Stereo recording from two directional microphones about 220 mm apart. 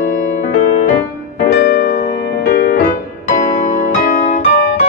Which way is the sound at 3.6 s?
35° left (ahead or behind).